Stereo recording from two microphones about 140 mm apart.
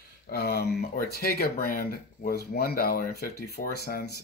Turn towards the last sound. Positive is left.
turn(degrees=90)